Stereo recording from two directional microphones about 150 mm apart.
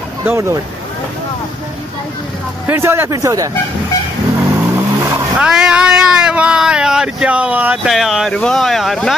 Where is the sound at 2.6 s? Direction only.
15° right (ahead or behind).